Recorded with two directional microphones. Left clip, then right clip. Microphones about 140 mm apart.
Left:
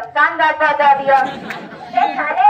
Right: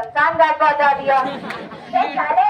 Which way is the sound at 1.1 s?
20° right (ahead or behind).